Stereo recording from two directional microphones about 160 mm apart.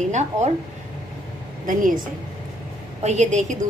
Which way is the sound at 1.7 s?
55° right (ahead or behind).